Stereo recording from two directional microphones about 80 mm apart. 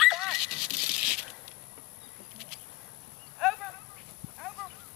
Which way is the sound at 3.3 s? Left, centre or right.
Centre.